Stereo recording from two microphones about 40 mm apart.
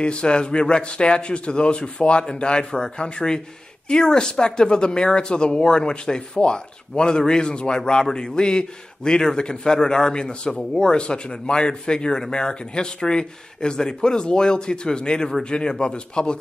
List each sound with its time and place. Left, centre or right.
0.0 s speech: left